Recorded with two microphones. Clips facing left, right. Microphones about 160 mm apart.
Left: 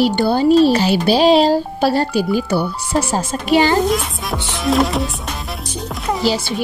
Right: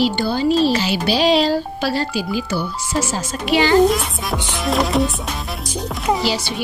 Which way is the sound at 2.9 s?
35° left (ahead or behind).